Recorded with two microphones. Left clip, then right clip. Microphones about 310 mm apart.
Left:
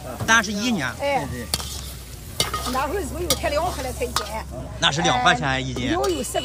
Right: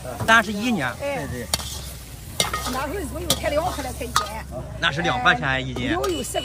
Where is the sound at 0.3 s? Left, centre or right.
Centre.